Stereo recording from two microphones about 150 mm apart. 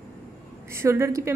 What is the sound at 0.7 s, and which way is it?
Speech, 15° right (ahead or behind).